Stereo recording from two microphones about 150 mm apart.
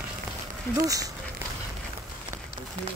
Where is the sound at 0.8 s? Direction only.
25° right (ahead or behind).